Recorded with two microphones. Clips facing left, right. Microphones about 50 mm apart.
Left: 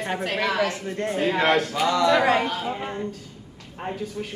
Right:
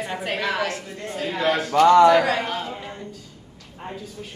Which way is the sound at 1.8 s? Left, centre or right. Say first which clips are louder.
Right 9 dB; right.